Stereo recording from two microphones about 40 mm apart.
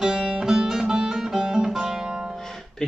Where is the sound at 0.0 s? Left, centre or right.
Centre.